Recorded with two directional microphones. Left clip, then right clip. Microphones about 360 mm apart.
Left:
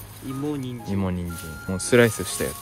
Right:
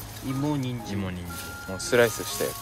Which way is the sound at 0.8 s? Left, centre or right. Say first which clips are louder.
Left 5 dB; centre.